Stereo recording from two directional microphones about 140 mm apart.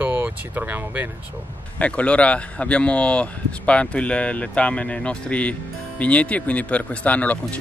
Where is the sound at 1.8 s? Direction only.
10° left (ahead or behind).